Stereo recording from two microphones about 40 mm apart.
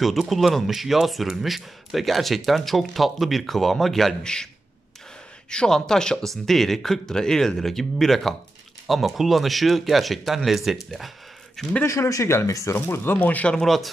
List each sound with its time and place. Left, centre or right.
0.0 s speech: centre
4.2 s speech: centre
5.5 s speech: left
6.2 s speech: centre
12.3 s speech: left
13.2 s speech: left